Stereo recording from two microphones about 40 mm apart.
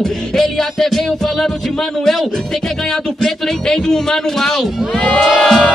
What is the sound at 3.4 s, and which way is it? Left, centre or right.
Speech, centre.